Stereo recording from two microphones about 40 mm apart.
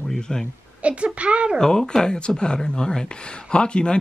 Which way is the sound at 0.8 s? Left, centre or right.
Right.